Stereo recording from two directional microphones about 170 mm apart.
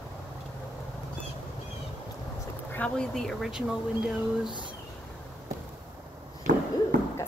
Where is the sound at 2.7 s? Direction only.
5° left (ahead or behind).